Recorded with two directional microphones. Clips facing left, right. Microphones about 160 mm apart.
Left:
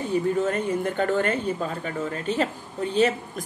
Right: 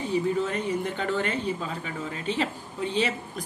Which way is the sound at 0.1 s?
50° left (ahead or behind).